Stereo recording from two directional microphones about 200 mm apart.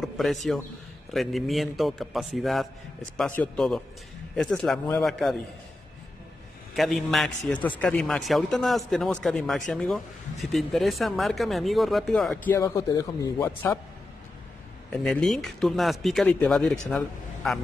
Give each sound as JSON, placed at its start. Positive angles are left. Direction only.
{"t": 0.0, "sound": "a man's voice", "side_deg": 0}
{"t": 6.7, "sound": "speech", "side_deg": 0}
{"t": 12.5, "sound": "a man's voice", "side_deg": 15}
{"t": 14.9, "sound": "speech", "side_deg": 5}